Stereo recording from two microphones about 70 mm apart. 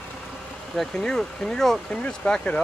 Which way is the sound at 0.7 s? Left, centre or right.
Centre.